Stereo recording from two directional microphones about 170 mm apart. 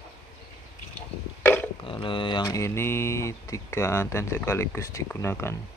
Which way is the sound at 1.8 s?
30° left (ahead or behind).